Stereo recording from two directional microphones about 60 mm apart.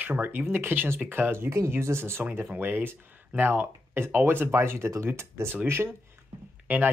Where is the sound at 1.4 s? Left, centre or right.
Right.